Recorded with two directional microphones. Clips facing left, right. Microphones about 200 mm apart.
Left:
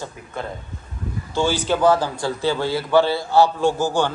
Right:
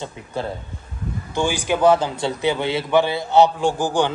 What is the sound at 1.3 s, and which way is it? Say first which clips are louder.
A man's voice: left 1 dB; 15° right (ahead or behind).